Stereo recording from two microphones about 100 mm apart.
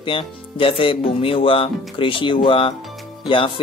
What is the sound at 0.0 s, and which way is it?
Speech, 60° left (ahead or behind).